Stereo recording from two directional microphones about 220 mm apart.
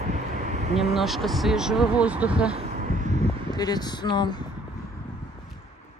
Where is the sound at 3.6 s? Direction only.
20° left (ahead or behind).